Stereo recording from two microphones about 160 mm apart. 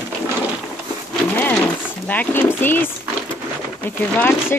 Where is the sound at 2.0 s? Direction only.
10° left (ahead or behind).